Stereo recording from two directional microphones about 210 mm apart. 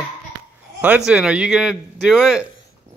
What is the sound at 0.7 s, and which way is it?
A man's voice, 5° right (ahead or behind).